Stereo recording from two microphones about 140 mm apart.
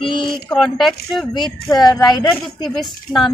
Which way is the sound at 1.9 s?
30° left (ahead or behind).